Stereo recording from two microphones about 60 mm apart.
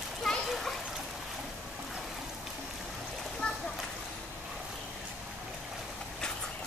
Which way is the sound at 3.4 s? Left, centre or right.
Centre.